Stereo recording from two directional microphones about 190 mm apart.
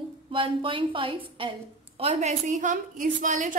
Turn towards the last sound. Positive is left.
turn(degrees=-45)  # may be behind; listen again after turning